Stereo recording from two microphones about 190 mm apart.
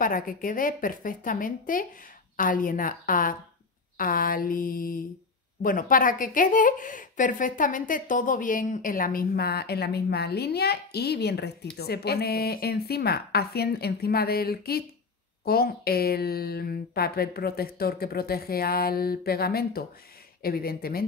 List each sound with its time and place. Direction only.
0.0 s a woman's voice: 45° left (ahead or behind)